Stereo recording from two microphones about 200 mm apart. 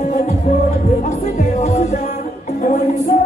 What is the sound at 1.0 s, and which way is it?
Music, 35° left (ahead or behind).